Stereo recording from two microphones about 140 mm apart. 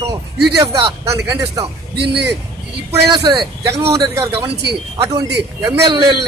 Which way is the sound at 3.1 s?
35° right (ahead or behind).